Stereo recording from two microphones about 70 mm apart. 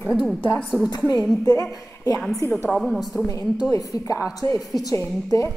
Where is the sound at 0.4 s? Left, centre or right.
Left.